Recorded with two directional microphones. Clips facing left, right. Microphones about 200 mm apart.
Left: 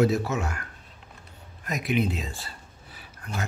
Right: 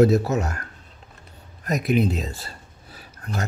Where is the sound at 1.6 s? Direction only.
40° right (ahead or behind).